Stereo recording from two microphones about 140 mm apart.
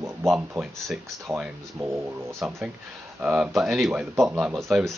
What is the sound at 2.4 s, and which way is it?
Speech, centre (ahead or behind).